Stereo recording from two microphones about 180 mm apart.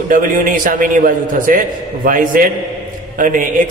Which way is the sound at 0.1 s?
50° right (ahead or behind).